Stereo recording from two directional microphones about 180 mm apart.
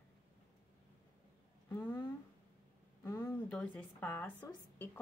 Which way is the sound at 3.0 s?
20° left (ahead or behind).